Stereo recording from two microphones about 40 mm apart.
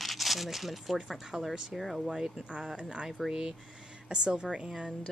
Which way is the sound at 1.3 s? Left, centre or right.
Right.